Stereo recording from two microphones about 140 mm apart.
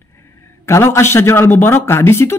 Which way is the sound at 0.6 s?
20° left (ahead or behind).